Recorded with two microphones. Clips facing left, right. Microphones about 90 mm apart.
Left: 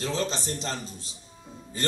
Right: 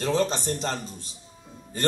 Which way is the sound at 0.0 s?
55° right (ahead or behind).